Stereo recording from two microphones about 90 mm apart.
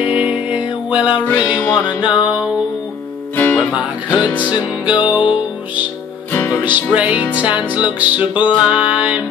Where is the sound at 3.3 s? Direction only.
20° left (ahead or behind).